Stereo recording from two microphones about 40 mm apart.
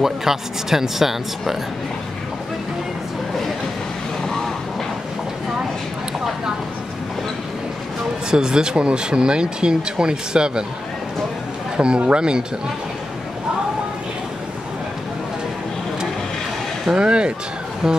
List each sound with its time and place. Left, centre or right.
0.0 s speech: centre
8.3 s speech: centre
11.7 s speech: right
16.9 s speech: right
17.8 s speech: centre